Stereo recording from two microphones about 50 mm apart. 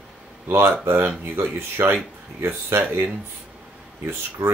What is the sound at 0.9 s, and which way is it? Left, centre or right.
Speech, right.